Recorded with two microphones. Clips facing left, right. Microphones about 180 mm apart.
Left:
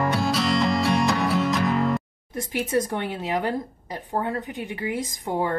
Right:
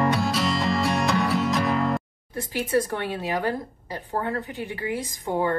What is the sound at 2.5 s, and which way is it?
A woman's voice, 20° left (ahead or behind).